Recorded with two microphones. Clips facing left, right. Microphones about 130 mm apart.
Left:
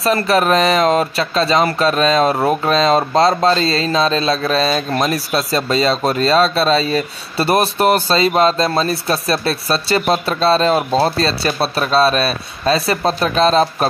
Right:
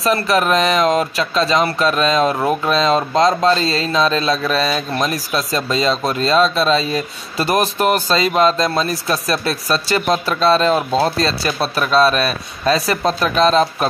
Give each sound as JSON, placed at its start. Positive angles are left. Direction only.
{"t": 0.0, "sound": "speech", "side_deg": 35}